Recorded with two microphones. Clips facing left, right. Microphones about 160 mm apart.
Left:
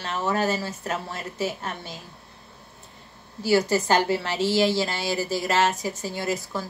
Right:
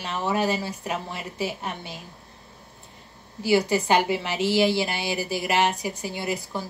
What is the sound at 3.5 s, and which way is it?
A woman's voice, 15° right (ahead or behind).